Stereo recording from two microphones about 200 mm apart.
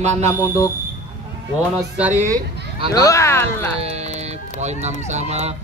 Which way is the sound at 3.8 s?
30° right (ahead or behind).